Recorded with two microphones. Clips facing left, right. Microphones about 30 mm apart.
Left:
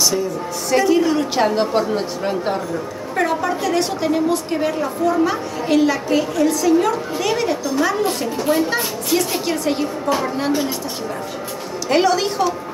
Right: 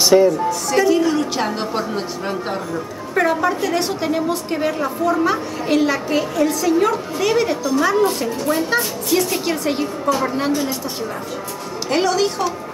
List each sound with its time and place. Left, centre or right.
0.0 s speech: right
0.5 s a woman's voice: centre
11.9 s a woman's voice: centre